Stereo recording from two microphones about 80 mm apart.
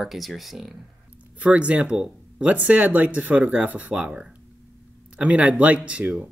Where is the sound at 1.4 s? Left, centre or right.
Centre.